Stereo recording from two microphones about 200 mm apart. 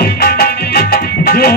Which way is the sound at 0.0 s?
50° left (ahead or behind).